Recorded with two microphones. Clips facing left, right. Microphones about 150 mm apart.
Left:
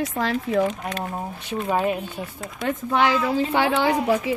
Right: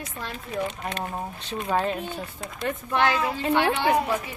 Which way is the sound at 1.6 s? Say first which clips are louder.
Left 2 dB; 10° left (ahead or behind).